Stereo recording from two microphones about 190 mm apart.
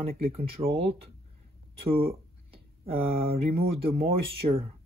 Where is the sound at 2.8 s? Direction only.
30° right (ahead or behind).